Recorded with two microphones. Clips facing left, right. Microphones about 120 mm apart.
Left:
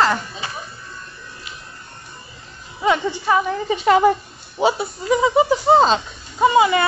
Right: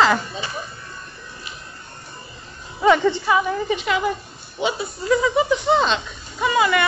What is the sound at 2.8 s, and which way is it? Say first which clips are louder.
Speech: right 3 dB; 5° left (ahead or behind).